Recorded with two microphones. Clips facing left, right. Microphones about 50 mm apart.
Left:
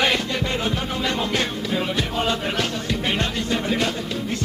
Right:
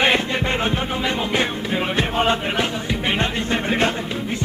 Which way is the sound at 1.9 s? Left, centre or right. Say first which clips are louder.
Right 4 dB; right.